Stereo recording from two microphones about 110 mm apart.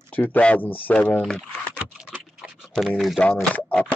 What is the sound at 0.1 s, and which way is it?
Speech, 15° left (ahead or behind).